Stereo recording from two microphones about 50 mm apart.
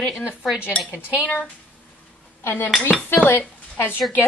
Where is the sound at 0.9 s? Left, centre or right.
Left.